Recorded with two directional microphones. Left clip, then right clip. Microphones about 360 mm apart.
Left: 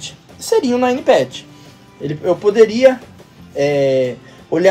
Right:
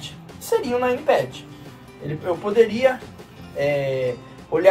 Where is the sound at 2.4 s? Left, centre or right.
Left.